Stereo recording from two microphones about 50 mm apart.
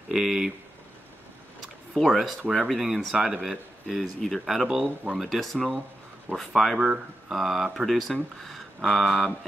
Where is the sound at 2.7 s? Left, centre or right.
Centre.